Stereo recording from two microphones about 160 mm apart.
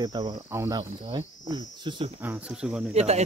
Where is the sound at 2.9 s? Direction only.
40° right (ahead or behind).